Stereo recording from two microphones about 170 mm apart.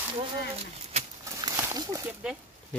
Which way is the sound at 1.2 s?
20° right (ahead or behind).